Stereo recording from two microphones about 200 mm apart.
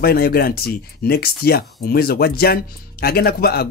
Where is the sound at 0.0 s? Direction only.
50° left (ahead or behind).